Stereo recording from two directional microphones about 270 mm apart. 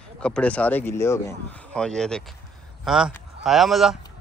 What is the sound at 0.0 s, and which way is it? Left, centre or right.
Speech, centre.